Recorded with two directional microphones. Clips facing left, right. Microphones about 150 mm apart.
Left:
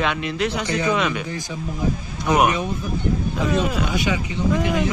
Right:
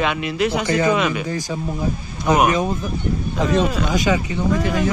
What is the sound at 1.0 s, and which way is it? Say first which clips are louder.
Speech: right 2 dB; 5° right (ahead or behind).